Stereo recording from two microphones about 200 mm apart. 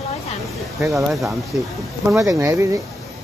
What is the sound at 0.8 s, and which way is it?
Speech, centre (ahead or behind).